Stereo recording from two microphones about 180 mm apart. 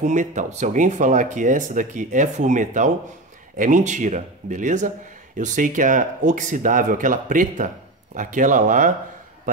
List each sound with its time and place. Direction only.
0.0 s speech: 40° right (ahead or behind)